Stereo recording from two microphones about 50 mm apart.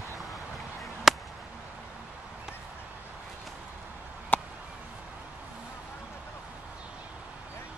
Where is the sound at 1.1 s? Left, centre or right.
Centre.